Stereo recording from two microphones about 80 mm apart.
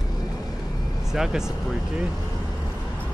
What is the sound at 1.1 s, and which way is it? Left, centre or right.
Speech, centre.